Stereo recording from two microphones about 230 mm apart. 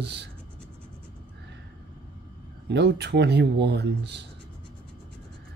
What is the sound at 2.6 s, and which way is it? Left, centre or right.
Speech, right.